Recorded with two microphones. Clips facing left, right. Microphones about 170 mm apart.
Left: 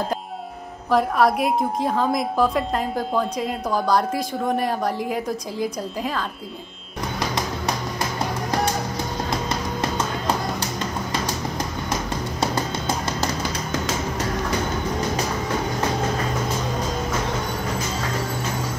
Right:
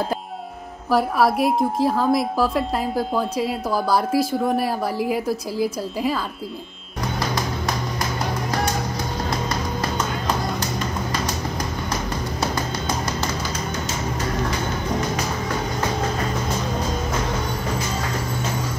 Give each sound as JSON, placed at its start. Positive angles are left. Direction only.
{"t": 0.8, "sound": "a woman's voice", "side_deg": -5}
{"t": 12.4, "sound": "music", "side_deg": 30}